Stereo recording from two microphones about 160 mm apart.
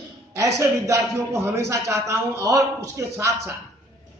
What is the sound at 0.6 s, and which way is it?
A man's voice, 20° right (ahead or behind).